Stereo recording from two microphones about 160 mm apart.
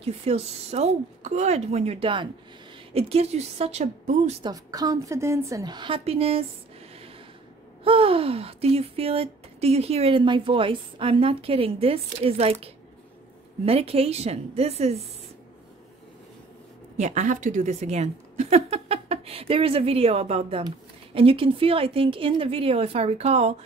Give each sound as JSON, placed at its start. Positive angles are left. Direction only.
{"t": 0.0, "sound": "speech", "side_deg": -40}
{"t": 4.4, "sound": "a woman's voice", "side_deg": -25}
{"t": 7.8, "sound": "speech", "side_deg": -35}
{"t": 16.9, "sound": "speech", "side_deg": -45}